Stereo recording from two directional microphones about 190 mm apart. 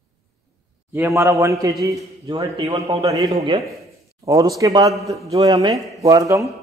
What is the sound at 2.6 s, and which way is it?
Speech, 35° right (ahead or behind).